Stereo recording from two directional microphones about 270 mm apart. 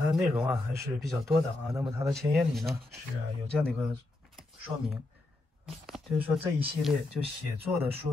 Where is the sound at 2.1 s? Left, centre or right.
Centre.